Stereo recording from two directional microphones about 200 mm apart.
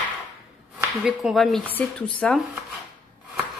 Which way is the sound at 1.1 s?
Centre (ahead or behind).